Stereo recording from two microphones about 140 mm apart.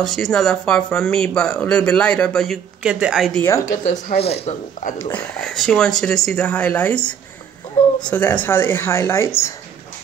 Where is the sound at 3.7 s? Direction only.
60° left (ahead or behind).